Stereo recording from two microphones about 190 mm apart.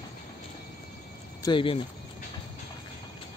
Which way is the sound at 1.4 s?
25° left (ahead or behind).